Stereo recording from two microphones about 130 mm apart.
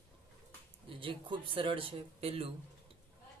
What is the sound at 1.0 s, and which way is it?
Speech, 40° right (ahead or behind).